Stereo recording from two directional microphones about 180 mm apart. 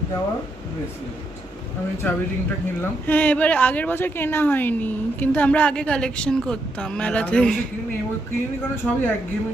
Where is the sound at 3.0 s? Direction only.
10° left (ahead or behind).